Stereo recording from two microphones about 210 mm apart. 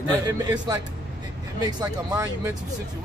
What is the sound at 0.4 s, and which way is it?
Speech, 20° right (ahead or behind).